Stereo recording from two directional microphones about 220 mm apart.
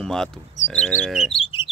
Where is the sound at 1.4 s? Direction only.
25° left (ahead or behind).